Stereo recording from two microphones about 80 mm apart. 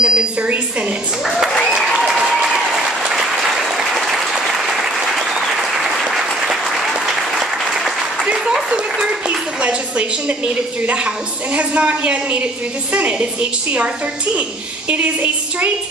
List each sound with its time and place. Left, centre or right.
0.0 s a woman's voice: centre
1.2 s applause: centre
8.5 s a woman's voice: centre